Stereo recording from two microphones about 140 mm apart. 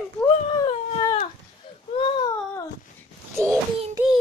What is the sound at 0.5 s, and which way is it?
Dog, 25° left (ahead or behind).